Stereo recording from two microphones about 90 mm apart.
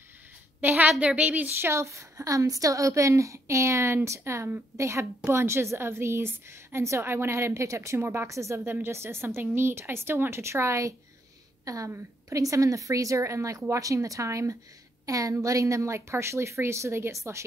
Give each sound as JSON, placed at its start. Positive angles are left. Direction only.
{"t": 0.6, "sound": "a woman's voice", "side_deg": -20}
{"t": 1.7, "sound": "a woman's voice", "side_deg": -35}